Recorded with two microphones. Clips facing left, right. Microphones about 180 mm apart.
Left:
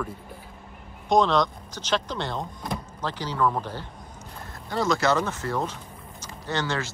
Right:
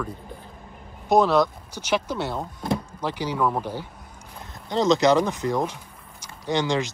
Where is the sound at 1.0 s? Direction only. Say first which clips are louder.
Right 2 dB; 5° right (ahead or behind).